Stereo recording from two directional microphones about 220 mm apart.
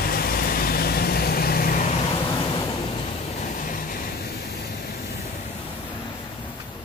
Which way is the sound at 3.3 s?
35° left (ahead or behind).